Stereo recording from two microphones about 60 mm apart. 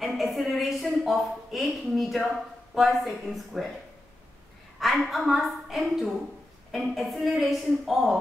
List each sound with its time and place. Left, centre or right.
0.0 s a sound: centre
1.0 s a woman's voice: centre
4.7 s a woman's voice: centre